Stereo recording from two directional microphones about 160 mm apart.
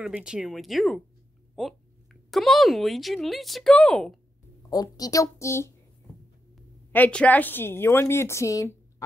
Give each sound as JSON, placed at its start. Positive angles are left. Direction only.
{"t": 0.0, "sound": "speech", "side_deg": -5}
{"t": 1.5, "sound": "a sound", "side_deg": 0}
{"t": 2.3, "sound": "speech", "side_deg": 0}
{"t": 4.6, "sound": "speech", "side_deg": 25}
{"t": 6.9, "sound": "a woman's voice", "side_deg": 10}